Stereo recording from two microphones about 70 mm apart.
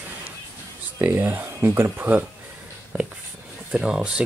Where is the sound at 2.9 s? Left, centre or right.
Right.